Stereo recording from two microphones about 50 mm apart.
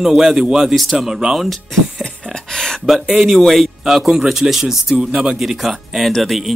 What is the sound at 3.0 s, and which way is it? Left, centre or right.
Speech, centre.